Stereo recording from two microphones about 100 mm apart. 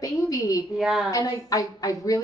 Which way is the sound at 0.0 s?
35° left (ahead or behind).